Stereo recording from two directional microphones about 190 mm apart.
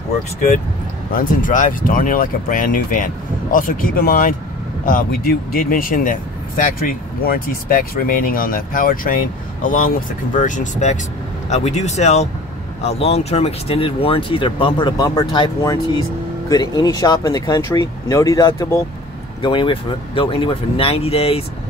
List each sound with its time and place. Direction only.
1.1 s speech: 45° left (ahead or behind)